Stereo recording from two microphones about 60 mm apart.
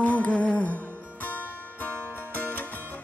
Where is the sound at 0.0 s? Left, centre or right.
Left.